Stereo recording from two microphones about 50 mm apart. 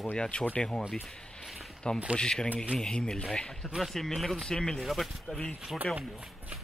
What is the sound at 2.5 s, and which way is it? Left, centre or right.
Speech, right.